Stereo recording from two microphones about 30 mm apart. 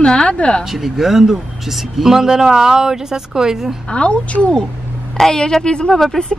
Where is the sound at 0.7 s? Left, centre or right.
Centre.